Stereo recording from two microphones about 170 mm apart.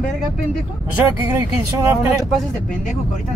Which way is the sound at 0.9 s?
15° right (ahead or behind).